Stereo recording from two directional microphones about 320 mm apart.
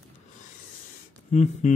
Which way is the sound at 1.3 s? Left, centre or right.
Left.